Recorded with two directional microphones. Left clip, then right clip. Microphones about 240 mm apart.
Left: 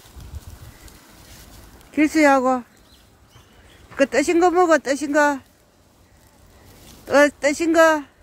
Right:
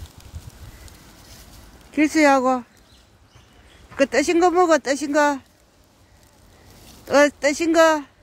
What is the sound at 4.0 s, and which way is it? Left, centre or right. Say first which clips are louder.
Speech: even; centre.